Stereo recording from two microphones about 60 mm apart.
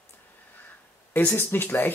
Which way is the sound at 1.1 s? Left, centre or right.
Left.